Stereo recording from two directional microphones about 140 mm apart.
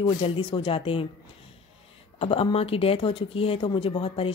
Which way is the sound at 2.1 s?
40° left (ahead or behind).